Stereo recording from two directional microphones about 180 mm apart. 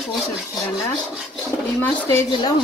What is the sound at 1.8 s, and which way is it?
Speech, 15° left (ahead or behind).